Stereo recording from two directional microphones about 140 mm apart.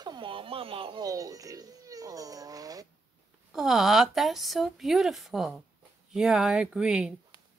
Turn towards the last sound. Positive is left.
turn(degrees=-5)  # may be behind; listen again after turning